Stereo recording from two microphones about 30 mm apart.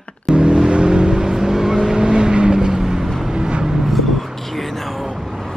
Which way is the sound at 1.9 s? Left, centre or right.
Right.